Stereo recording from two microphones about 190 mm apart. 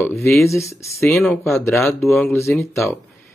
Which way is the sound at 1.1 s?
Centre (ahead or behind).